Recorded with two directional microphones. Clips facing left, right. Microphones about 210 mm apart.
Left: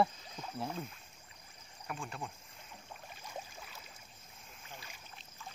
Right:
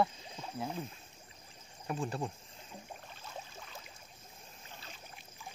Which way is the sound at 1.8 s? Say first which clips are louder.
Right 7 dB; 35° right (ahead or behind).